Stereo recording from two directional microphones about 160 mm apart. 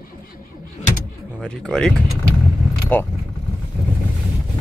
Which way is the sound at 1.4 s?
5° left (ahead or behind).